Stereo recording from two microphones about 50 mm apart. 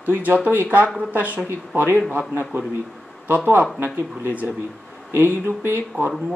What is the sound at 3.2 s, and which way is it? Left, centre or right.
Speech, right.